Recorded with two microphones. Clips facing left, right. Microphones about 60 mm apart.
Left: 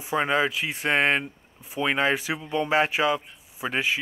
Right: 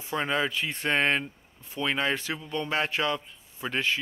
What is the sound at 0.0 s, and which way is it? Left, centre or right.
Speech, centre.